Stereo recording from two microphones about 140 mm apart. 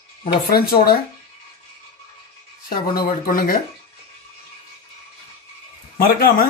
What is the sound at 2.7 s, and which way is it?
Speech, 90° left.